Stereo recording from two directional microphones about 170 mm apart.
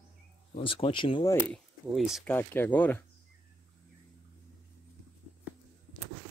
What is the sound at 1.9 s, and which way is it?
Speech, centre (ahead or behind).